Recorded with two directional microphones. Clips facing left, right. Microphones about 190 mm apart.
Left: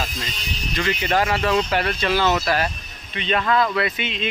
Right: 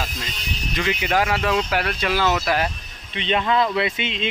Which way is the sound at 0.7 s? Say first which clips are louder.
Even; 15° right (ahead or behind).